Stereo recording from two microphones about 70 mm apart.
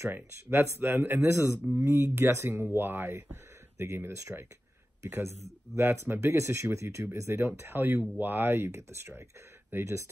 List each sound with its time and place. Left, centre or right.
0.0 s speech: right